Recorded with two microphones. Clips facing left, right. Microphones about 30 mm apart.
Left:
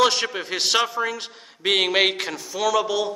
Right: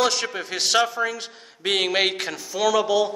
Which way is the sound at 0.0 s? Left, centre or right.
Centre.